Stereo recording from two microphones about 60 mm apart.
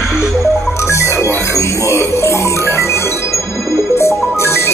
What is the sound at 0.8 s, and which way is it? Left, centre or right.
Music, left.